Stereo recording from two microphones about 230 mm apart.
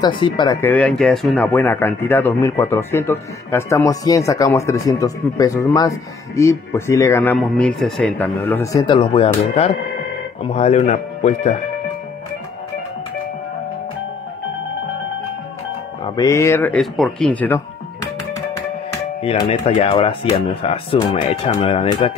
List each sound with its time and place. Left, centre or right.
0.0 s speech: centre
8.8 s speech: left
16.0 s speech: centre
19.2 s speech: left